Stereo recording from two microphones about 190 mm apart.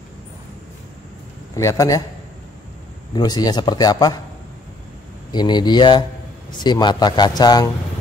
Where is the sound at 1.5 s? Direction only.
15° left (ahead or behind).